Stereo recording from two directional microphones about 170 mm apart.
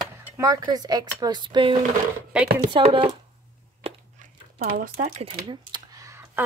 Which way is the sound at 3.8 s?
50° right (ahead or behind).